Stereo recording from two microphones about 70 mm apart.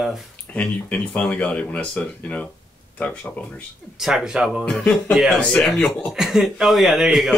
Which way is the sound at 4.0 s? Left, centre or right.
Centre.